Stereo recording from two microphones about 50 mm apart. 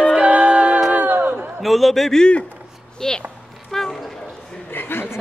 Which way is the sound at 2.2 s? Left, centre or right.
Left.